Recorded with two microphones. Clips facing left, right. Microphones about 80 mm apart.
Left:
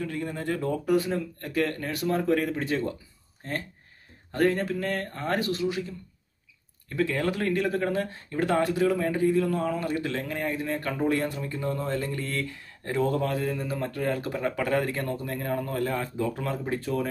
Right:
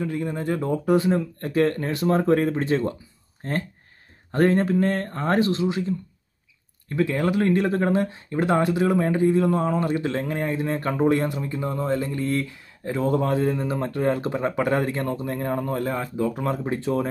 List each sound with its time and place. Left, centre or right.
0.0 s speech: right
8.0 s speech: right
13.1 s speech: right
16.0 s speech: centre
16.4 s speech: right